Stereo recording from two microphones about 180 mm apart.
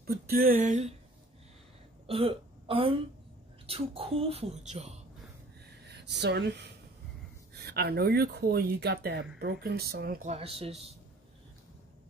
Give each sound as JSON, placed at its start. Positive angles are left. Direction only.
{"t": 0.0, "sound": "speech", "side_deg": -60}
{"t": 2.0, "sound": "speech", "side_deg": -30}
{"t": 5.9, "sound": "speech", "side_deg": -70}
{"t": 10.3, "sound": "speech", "side_deg": -35}